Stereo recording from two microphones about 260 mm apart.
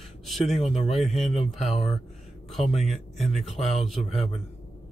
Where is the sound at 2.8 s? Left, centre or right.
Centre.